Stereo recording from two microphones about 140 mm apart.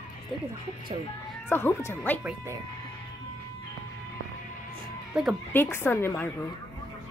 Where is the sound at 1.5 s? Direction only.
15° left (ahead or behind).